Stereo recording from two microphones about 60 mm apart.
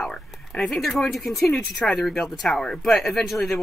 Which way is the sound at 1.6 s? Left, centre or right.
Left.